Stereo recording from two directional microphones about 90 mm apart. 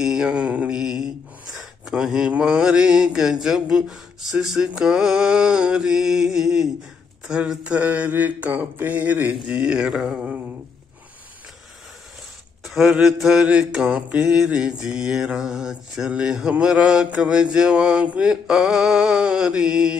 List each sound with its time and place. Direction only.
0.0 s mantra: 10° right (ahead or behind)
9.5 s mantra: 10° right (ahead or behind)
12.6 s mantra: 5° right (ahead or behind)